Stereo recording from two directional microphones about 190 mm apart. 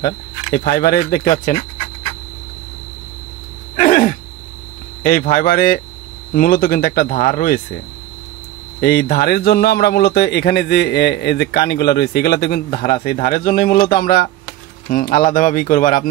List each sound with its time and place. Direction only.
0.0 s speech: 50° left (ahead or behind)
3.7 s a sound: 40° left (ahead or behind)
5.0 s speech: 50° left (ahead or behind)
8.8 s a man's voice: 55° left (ahead or behind)